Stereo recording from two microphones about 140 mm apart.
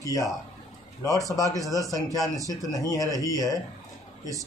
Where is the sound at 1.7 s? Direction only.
25° left (ahead or behind).